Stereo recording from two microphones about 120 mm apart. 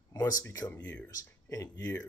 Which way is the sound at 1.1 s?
30° left (ahead or behind).